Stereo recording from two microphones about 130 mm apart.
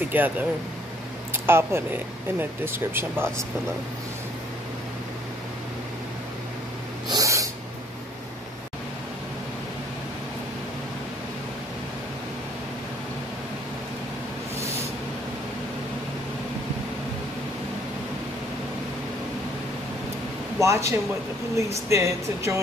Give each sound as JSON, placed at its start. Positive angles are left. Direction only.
{"t": 0.0, "sound": "speech", "side_deg": -15}
{"t": 7.1, "sound": "snort", "side_deg": -25}
{"t": 20.5, "sound": "a man's voice", "side_deg": -20}